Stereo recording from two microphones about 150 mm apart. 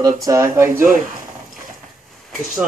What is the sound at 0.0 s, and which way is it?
Speech, 20° right (ahead or behind).